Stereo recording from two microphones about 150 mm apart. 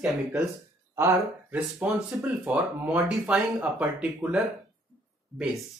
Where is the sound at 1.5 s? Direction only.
10° right (ahead or behind).